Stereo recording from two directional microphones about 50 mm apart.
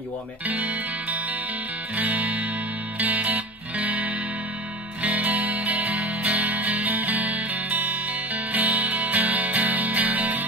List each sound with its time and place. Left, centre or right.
0.5 s music: right